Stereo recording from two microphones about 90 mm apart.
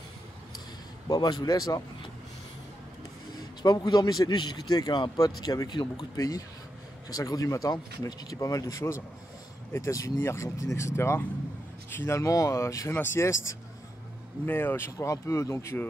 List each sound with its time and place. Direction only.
1.0 s a man's voice: 50° left (ahead or behind)
3.6 s a man's voice: 50° left (ahead or behind)
5.1 s a man's voice: 45° left (ahead or behind)
14.4 s speech: 20° left (ahead or behind)
15.0 s speech: 35° left (ahead or behind)